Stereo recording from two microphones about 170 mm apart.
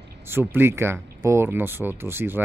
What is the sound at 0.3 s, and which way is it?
A man's voice, 15° right (ahead or behind).